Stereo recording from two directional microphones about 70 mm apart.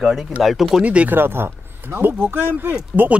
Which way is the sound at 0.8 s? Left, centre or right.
Centre.